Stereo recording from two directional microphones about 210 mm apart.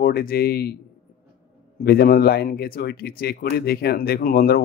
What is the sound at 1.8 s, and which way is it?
Speech, 45° left (ahead or behind).